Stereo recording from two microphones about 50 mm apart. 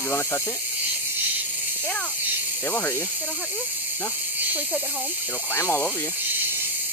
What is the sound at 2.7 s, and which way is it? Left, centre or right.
Speech, left.